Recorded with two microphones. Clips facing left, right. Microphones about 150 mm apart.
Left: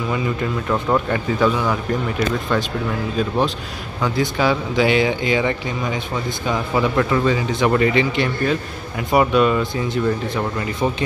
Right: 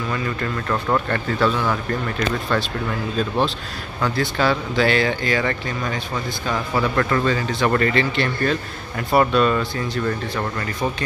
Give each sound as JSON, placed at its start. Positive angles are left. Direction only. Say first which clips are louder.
{"t": 0.1, "sound": "speech", "louder": "left 4 dB", "side_deg": 10}